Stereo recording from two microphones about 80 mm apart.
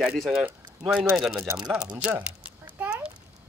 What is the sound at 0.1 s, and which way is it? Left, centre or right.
Speech, centre.